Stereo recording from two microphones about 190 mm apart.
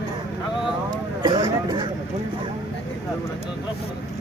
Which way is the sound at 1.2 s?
25° right (ahead or behind).